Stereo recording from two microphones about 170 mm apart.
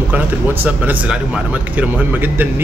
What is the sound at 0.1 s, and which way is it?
Speech, 10° right (ahead or behind).